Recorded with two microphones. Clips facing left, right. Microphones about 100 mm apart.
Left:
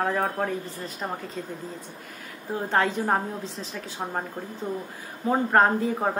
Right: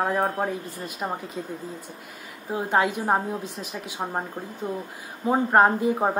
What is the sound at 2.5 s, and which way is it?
Speech, 10° right (ahead or behind).